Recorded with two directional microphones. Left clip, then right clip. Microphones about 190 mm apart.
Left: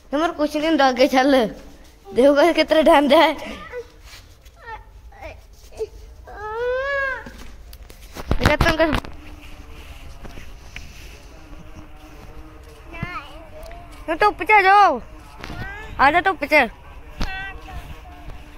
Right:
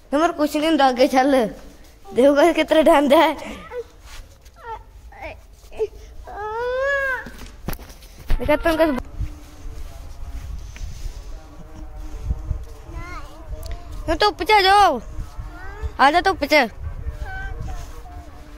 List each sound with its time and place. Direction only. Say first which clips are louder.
0.1 s a woman's voice: right 2 dB; 15° right (ahead or behind)
0.7 s speech: even; 5° right (ahead or behind)
5.2 s baby cry: right 3 dB; 40° right (ahead or behind)
6.6 s baby cry: right 1 dB; 25° right (ahead or behind)
8.5 s speech: even; 5° right (ahead or behind)
13.7 s speech: right 2 dB; 50° right (ahead or behind)
16.0 s speech: right 1 dB; 30° right (ahead or behind)